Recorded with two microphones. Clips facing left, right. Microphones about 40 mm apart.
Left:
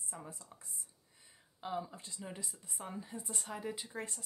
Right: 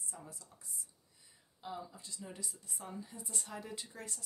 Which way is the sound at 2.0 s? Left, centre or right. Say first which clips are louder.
Left 1 dB; left.